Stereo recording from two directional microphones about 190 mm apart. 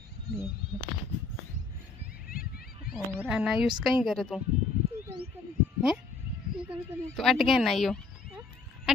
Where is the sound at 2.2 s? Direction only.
50° left (ahead or behind).